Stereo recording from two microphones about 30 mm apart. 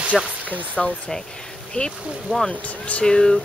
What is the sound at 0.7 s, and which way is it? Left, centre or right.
Speech, left.